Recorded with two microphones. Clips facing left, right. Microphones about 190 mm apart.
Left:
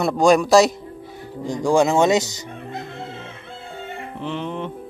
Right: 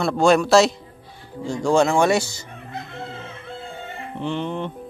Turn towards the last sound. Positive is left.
turn(degrees=5)  # may be behind; listen again after turning